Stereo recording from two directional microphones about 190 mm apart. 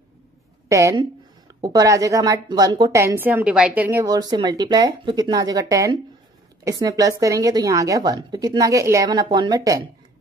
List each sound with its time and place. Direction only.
0.7 s a woman's voice: 15° right (ahead or behind)